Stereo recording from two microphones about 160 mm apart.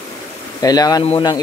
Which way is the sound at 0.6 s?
25° left (ahead or behind).